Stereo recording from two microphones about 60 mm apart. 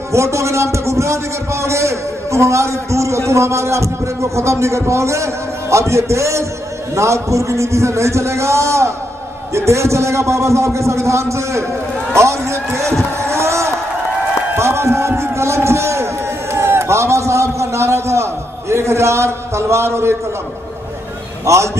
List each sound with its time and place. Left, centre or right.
0.1 s a man's voice: right
12.1 s vehicle: right
14.5 s a sound: right
21.5 s a man's voice: right